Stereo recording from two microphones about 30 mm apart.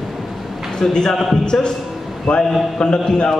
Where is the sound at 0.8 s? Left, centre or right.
Centre.